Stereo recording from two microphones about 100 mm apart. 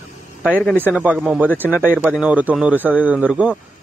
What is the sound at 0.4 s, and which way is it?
A man's voice, 15° right (ahead or behind).